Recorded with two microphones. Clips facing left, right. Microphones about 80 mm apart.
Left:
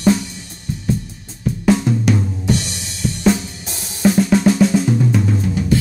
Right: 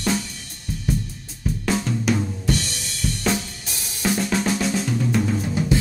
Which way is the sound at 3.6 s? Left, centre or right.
Left.